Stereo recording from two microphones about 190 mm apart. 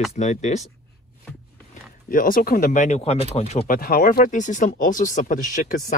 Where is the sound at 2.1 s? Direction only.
45° left (ahead or behind).